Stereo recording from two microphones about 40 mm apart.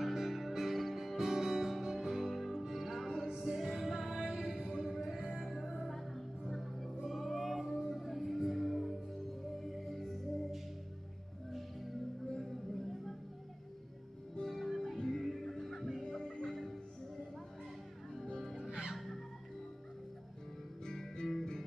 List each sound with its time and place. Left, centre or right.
0.0 s music: centre
12.3 s a sound: centre
14.4 s music: centre
16.0 s music: centre
18.6 s music: centre
18.9 s music: centre
20.8 s music: centre